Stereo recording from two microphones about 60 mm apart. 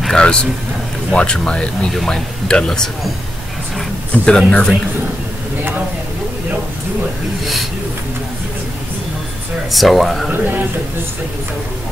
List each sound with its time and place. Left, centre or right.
0.1 s speech: centre
1.9 s speech: centre
4.1 s speech: centre
9.7 s speech: centre